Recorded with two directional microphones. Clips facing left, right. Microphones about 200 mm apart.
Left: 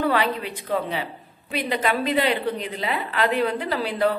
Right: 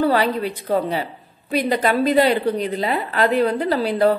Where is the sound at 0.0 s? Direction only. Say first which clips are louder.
Right 4 dB; 35° right (ahead or behind).